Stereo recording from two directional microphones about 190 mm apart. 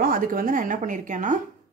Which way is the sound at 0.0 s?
50° right (ahead or behind).